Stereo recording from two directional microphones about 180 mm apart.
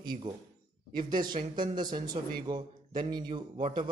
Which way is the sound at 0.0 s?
25° right (ahead or behind).